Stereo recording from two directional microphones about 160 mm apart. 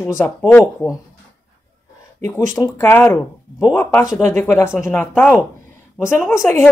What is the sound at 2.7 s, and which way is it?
Speech, 15° left (ahead or behind).